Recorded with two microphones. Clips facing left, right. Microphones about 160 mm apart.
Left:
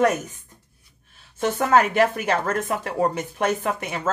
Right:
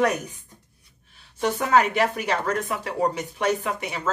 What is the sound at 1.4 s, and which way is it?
Speech, 45° left (ahead or behind).